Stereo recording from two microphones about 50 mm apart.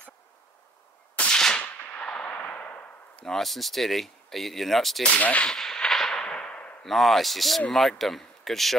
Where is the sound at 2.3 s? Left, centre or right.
Left.